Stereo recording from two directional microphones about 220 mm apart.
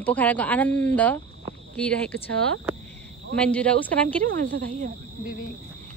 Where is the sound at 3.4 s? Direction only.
5° left (ahead or behind).